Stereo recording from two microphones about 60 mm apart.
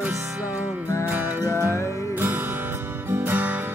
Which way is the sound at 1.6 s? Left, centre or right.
Right.